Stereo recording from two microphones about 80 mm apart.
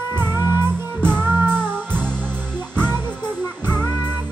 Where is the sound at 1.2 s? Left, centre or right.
Right.